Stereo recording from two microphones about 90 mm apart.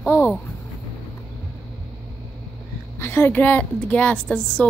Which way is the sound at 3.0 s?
25° left (ahead or behind).